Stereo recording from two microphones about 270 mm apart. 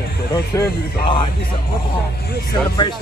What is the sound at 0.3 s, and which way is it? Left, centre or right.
Speech, centre.